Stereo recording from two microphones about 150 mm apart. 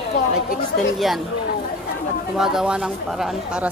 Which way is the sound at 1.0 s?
Centre (ahead or behind).